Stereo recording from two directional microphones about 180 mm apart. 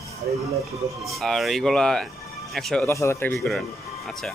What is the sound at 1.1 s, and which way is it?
Speech, centre (ahead or behind).